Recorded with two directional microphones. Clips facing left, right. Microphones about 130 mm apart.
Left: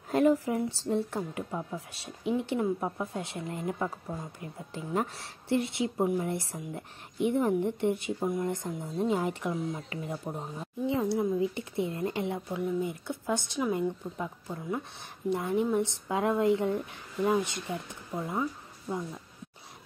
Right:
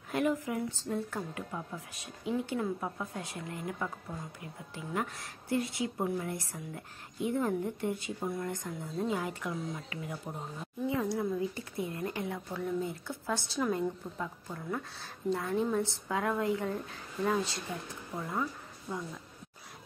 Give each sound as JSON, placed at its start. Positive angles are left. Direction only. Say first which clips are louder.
{"t": 0.1, "sound": "speech", "louder": "left 6 dB", "side_deg": 35}